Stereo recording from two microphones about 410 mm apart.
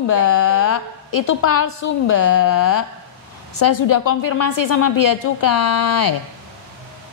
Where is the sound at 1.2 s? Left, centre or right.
Left.